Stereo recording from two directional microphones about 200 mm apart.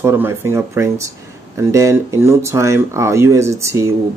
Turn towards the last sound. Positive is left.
turn(degrees=-15)  # may be behind; listen again after turning